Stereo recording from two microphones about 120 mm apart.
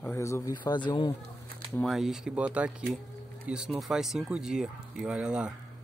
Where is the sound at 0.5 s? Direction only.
40° left (ahead or behind).